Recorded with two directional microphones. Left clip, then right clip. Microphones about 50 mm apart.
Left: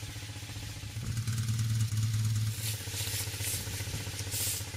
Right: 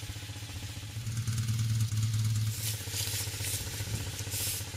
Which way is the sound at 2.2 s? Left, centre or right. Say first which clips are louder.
Right 1 dB; centre.